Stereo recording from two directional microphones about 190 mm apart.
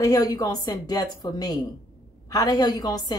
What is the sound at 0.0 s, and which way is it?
A woman's voice, 20° left (ahead or behind).